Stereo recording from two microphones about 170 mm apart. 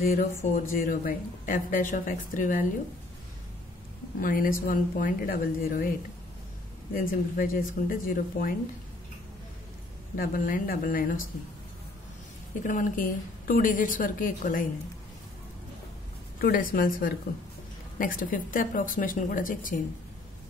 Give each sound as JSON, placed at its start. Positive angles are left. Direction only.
{"t": 0.1, "sound": "speech", "side_deg": 40}
{"t": 0.7, "sound": "a woman's voice", "side_deg": 55}
{"t": 4.2, "sound": "speech", "side_deg": 55}
{"t": 6.9, "sound": "speech", "side_deg": 55}
{"t": 10.1, "sound": "speech", "side_deg": 55}
{"t": 12.6, "sound": "a woman's voice", "side_deg": 50}
{"t": 16.3, "sound": "a woman's voice", "side_deg": 55}